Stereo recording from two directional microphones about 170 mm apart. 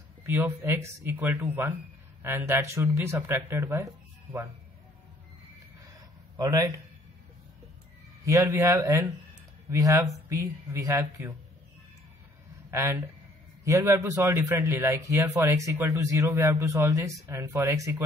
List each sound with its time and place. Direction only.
0.3 s speech: 10° right (ahead or behind)
6.3 s speech: 20° right (ahead or behind)
8.3 s speech: 20° right (ahead or behind)
12.7 s speech: 15° right (ahead or behind)